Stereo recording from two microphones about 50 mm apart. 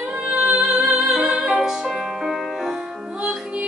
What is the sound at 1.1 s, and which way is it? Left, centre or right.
Music, centre.